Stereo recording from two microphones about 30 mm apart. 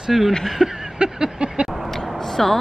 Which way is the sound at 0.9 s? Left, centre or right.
Right.